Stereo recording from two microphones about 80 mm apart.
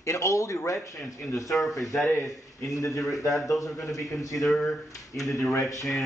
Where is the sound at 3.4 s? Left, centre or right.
Left.